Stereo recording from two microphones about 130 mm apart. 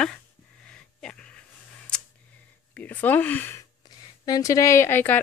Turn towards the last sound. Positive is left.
turn(degrees=15)  # may be behind; listen again after turning